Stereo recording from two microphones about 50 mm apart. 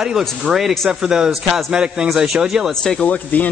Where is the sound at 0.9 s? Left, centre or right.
Centre.